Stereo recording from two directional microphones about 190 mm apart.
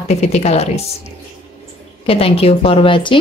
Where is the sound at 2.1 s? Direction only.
30° left (ahead or behind).